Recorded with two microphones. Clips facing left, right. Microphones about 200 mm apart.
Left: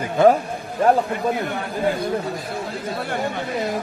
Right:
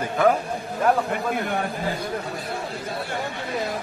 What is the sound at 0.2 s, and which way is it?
Speech, 25° left (ahead or behind).